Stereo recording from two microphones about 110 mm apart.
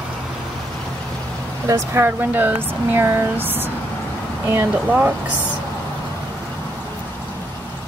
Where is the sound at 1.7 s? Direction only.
20° right (ahead or behind).